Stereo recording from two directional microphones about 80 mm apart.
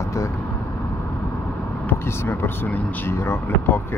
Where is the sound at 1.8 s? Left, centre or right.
Left.